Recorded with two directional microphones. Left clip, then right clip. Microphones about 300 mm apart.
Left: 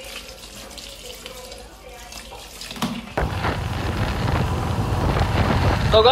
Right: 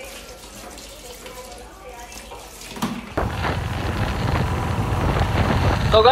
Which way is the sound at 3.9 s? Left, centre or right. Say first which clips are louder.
Even; centre.